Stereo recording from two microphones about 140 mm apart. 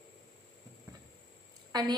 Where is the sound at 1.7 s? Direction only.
30° right (ahead or behind).